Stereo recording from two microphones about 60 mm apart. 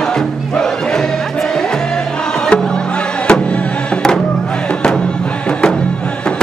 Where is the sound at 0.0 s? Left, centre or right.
Centre.